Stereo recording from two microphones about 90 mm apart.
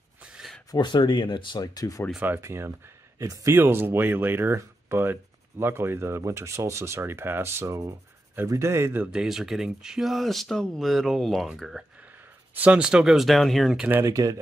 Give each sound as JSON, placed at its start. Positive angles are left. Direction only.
{"t": 0.2, "sound": "a sound", "side_deg": -10}
{"t": 0.7, "sound": "speech", "side_deg": 60}
{"t": 1.6, "sound": "speech", "side_deg": 45}
{"t": 2.1, "sound": "speech", "side_deg": -20}
{"t": 3.5, "sound": "speech", "side_deg": -25}
{"t": 9.0, "sound": "speech", "side_deg": -5}
{"t": 12.5, "sound": "speech", "side_deg": -15}
{"t": 13.7, "sound": "speech", "side_deg": -20}